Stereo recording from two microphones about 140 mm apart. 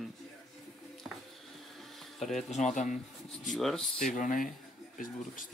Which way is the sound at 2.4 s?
55° left (ahead or behind).